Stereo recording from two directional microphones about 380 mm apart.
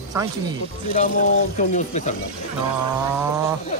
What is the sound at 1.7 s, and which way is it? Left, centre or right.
Speech, centre.